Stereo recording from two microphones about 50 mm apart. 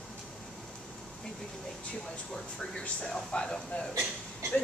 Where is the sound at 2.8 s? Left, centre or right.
Centre.